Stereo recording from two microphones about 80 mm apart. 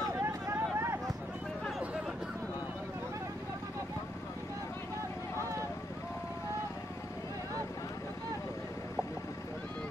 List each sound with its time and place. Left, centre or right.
0.2 s vehicle: right